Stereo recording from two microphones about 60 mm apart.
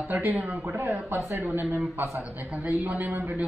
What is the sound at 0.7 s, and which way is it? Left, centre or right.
Speech, right.